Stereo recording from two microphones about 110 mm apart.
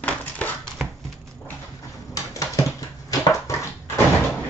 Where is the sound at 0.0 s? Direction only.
15° left (ahead or behind).